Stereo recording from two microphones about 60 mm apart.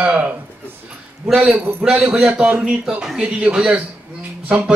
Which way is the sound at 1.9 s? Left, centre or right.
Right.